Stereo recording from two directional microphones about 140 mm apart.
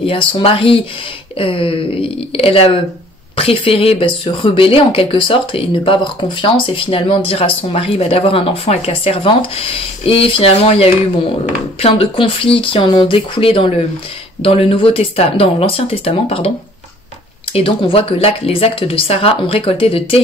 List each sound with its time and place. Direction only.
0.0 s speech: 40° left (ahead or behind)
17.5 s speech: 40° left (ahead or behind)